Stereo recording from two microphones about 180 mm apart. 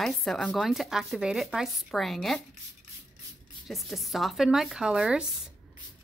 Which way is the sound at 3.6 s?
Centre (ahead or behind).